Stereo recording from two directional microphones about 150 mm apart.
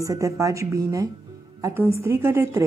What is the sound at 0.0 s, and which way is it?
A woman's voice, 20° right (ahead or behind).